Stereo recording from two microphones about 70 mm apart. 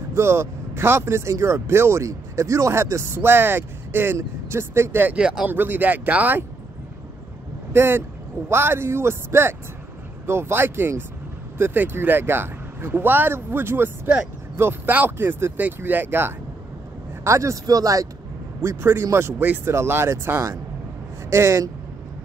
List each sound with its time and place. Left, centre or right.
0.1 s speech: right
5.1 s speech: centre
5.5 s speech: right
7.7 s speech: right
17.2 s speech: right
18.6 s speech: right
19.4 s speech: right
19.7 s speech: right